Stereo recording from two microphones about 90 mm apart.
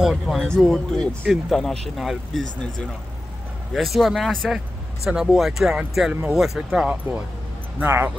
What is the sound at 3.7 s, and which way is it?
Speech, centre (ahead or behind).